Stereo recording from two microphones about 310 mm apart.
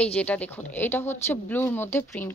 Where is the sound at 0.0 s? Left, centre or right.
Centre.